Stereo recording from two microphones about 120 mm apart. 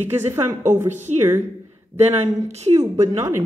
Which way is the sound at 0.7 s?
80° right.